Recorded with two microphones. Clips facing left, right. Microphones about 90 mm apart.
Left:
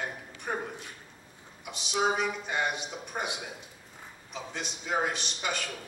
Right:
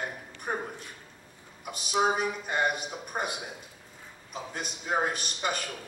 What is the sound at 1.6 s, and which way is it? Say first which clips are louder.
A man's voice: right 2 dB; 45° right (ahead or behind).